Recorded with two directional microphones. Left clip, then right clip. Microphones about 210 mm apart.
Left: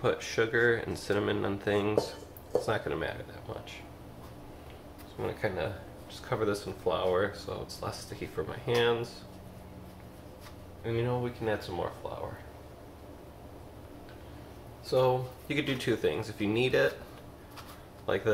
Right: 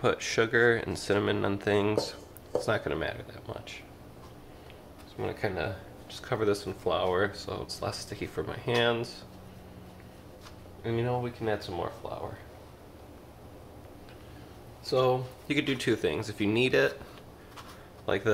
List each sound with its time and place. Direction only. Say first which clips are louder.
0.0 s speech: right 2 dB; 45° right (ahead or behind)
5.2 s speech: right 1 dB; 45° right (ahead or behind)
10.8 s speech: right 1 dB; 45° right (ahead or behind)
14.9 s speech: right 1 dB; 45° right (ahead or behind)
18.0 s speech: right 1 dB; 50° right (ahead or behind)